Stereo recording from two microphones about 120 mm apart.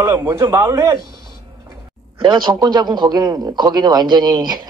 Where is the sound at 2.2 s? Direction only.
40° right (ahead or behind).